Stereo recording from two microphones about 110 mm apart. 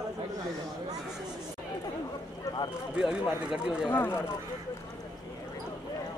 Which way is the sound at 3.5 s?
5° right (ahead or behind).